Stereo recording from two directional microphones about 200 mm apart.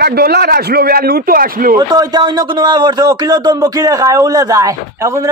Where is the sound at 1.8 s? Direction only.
20° right (ahead or behind).